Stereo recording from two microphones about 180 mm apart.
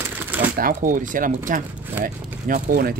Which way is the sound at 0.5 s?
50° right (ahead or behind).